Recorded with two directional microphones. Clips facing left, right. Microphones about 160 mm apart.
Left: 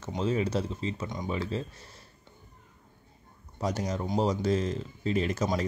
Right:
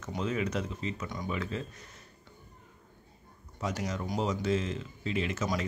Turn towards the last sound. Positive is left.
turn(degrees=40)  # may be behind; listen again after turning